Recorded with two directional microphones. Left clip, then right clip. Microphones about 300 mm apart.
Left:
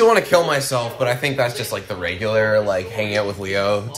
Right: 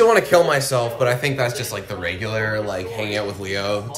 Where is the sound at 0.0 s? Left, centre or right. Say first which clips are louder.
Even; centre.